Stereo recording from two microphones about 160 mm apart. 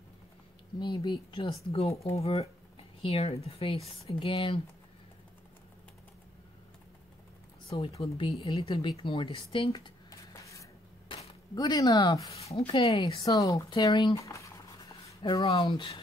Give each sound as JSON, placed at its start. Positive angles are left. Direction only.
{"t": 0.7, "sound": "speech", "side_deg": 30}
{"t": 7.7, "sound": "speech", "side_deg": 30}
{"t": 10.0, "sound": "a sound", "side_deg": 20}
{"t": 11.5, "sound": "speech", "side_deg": 25}
{"t": 12.4, "sound": "speech", "side_deg": 40}
{"t": 13.0, "sound": "speech", "side_deg": 25}
{"t": 15.4, "sound": "speech", "side_deg": 35}